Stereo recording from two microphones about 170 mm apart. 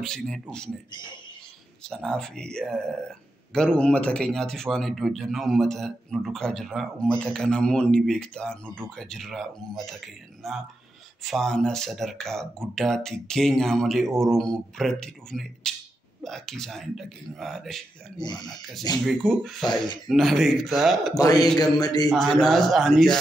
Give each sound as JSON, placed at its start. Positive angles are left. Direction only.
{"t": 0.0, "sound": "speech", "side_deg": 5}
{"t": 1.9, "sound": "speech", "side_deg": 5}
{"t": 18.1, "sound": "speech", "side_deg": 25}
{"t": 18.5, "sound": "speech", "side_deg": 0}
{"t": 21.2, "sound": "speech", "side_deg": 20}
{"t": 22.1, "sound": "speech", "side_deg": 0}